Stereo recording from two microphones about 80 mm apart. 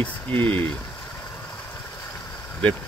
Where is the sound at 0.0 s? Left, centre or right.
Left.